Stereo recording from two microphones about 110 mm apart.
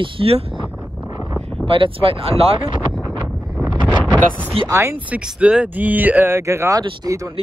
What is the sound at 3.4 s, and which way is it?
Wind noise, 30° right (ahead or behind).